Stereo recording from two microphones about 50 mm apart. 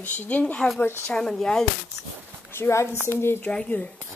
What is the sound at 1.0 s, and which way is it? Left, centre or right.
Speech, centre.